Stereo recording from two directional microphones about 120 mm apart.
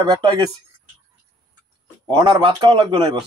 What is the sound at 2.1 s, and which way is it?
A man's voice, 45° right (ahead or behind).